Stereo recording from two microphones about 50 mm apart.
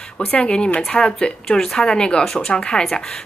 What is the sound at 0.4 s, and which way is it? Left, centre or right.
A woman's voice, centre.